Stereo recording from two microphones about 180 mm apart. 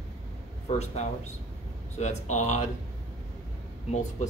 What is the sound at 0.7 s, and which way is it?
Speech, 40° left (ahead or behind).